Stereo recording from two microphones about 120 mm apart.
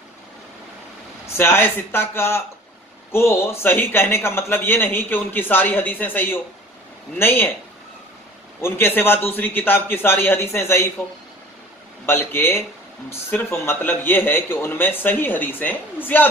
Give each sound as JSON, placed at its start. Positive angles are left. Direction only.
{"t": 1.2, "sound": "a man's voice", "side_deg": 20}
{"t": 8.5, "sound": "a man's voice", "side_deg": 20}
{"t": 12.1, "sound": "a man's voice", "side_deg": 20}